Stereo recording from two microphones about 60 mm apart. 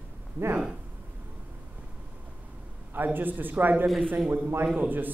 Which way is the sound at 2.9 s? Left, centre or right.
Right.